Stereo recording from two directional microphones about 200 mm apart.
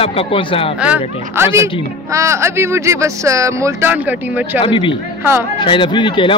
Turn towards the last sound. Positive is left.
turn(degrees=25)  # may be behind; listen again after turning